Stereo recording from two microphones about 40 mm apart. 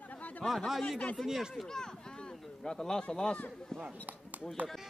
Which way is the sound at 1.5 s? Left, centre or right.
Centre.